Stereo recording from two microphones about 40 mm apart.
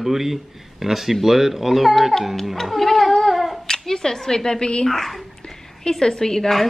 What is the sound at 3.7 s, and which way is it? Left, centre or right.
Speech, centre.